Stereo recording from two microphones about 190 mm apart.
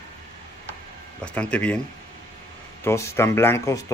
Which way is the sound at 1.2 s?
5° left (ahead or behind).